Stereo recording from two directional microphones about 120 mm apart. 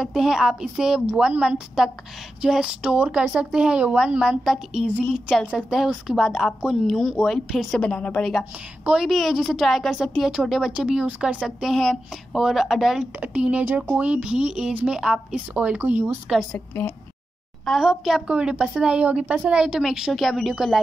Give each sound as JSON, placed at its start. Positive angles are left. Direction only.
{"t": 0.0, "sound": "a woman's voice", "side_deg": -5}
{"t": 16.5, "sound": "a woman's voice", "side_deg": 15}
{"t": 17.6, "sound": "a woman's voice", "side_deg": 0}